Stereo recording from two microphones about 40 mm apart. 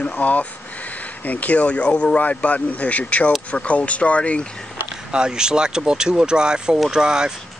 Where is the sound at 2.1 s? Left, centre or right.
Left.